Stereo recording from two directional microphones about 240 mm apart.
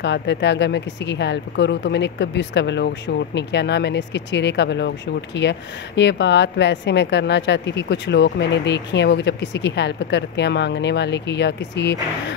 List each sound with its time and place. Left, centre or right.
0.0 s speech: left